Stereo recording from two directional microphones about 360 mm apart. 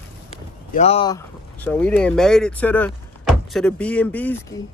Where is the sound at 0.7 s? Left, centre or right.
Centre.